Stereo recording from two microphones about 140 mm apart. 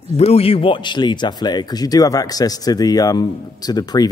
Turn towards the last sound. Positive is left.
turn(degrees=30)  # may be behind; listen again after turning